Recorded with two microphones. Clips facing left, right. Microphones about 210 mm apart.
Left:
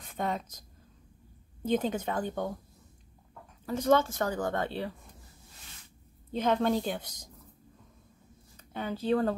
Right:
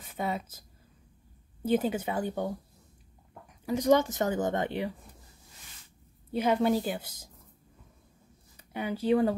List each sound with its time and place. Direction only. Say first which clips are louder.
0.0 s a woman's voice: even; 5° right (ahead or behind)
3.6 s a woman's voice: right 2 dB; 15° right (ahead or behind)
6.3 s a woman's voice: right 1 dB; 10° right (ahead or behind)
8.5 s speech: right 2 dB; 10° right (ahead or behind)